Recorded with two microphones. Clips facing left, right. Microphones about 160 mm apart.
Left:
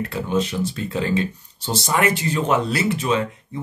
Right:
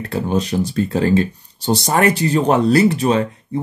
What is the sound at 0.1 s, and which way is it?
Speech, 35° right (ahead or behind).